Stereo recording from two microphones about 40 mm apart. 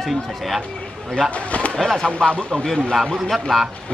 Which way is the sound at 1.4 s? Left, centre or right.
Left.